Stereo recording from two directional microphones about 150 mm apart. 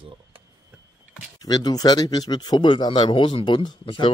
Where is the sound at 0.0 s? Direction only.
35° right (ahead or behind).